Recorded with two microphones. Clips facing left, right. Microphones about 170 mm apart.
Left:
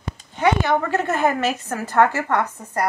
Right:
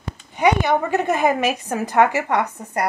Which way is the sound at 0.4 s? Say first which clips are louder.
Right 1 dB; 15° right (ahead or behind).